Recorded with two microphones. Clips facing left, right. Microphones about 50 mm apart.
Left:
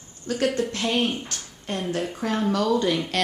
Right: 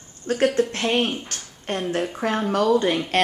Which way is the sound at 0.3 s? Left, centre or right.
Right.